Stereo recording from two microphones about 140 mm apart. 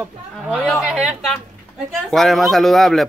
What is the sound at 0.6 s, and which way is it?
Speech, centre (ahead or behind).